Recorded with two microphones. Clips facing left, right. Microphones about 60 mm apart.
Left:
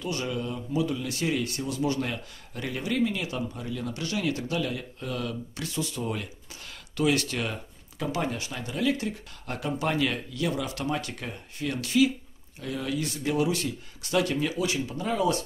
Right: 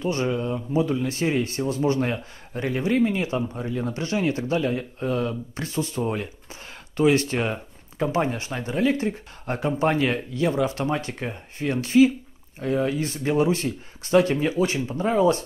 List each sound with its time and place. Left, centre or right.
0.0 s a man's voice: right